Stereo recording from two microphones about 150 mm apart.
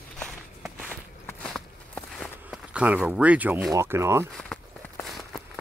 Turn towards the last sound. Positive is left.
turn(degrees=0)  # may be behind; listen again after turning